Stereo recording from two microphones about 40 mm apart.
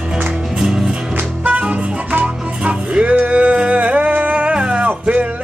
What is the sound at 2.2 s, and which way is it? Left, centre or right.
Music, right.